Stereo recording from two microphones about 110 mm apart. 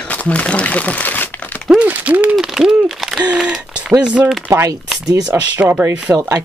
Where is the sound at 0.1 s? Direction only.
15° left (ahead or behind).